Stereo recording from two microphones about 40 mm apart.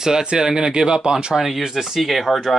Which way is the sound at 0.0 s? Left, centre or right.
Centre.